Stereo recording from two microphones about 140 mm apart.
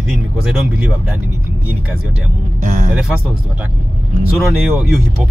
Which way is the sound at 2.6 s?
65° right (ahead or behind).